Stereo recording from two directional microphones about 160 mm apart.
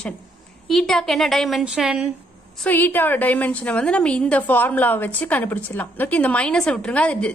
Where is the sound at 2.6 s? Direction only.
10° left (ahead or behind).